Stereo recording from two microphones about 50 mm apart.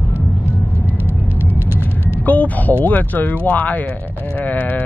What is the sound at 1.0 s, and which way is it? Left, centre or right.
Music, right.